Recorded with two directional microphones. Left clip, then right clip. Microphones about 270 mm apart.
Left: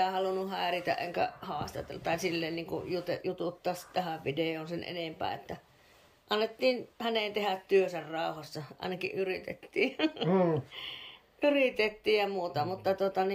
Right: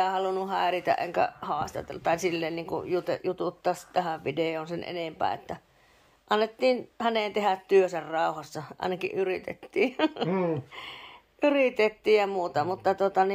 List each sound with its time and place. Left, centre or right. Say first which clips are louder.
0.0 s speech: right 4 dB; centre
11.4 s speech: right 4 dB; centre